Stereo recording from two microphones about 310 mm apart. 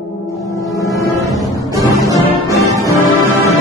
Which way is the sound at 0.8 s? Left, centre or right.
Centre.